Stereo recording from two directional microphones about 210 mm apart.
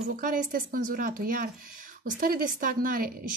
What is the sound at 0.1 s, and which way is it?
A woman's voice, 40° right (ahead or behind).